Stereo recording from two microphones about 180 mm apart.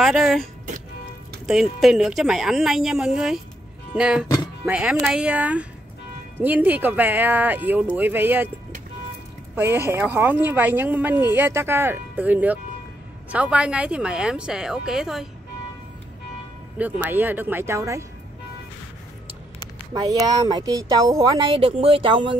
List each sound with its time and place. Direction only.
0.0 s a woman's voice: centre (ahead or behind)
9.6 s a woman's voice: 15° right (ahead or behind)
16.7 s speech: 10° right (ahead or behind)
19.9 s speech: 20° right (ahead or behind)